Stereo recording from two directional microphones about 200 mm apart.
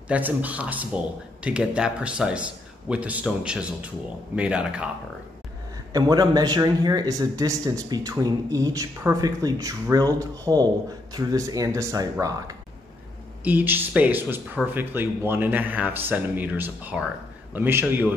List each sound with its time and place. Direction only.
0.1 s a man's voice: 5° right (ahead or behind)
5.9 s a man's voice: 20° right (ahead or behind)